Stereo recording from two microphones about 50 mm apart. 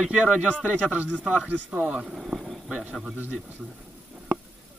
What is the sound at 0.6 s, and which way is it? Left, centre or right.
Speech, right.